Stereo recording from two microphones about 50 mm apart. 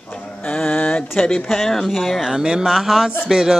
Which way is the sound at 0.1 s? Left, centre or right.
Left.